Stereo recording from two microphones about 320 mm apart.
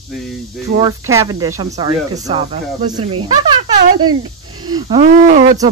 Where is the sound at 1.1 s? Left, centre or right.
Centre.